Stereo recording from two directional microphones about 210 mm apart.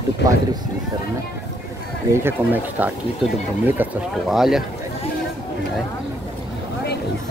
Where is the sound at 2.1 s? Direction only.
10° right (ahead or behind).